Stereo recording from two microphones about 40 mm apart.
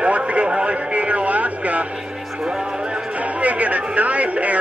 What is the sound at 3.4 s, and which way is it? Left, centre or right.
Speech, right.